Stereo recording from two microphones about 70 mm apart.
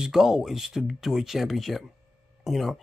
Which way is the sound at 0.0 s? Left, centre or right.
Centre.